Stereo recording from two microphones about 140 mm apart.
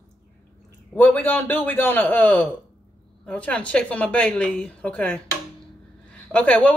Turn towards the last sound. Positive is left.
turn(degrees=10)  # may be behind; listen again after turning